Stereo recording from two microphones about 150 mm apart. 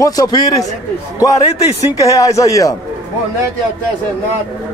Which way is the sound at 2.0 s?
20° left (ahead or behind).